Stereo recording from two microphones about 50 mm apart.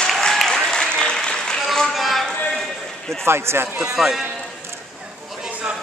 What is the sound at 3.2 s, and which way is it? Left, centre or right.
Speech, right.